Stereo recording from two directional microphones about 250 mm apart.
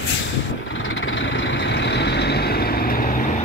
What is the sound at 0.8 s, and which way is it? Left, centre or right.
Vehicle, left.